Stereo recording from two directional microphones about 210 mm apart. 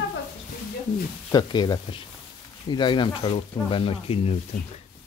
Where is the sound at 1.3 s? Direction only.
20° left (ahead or behind).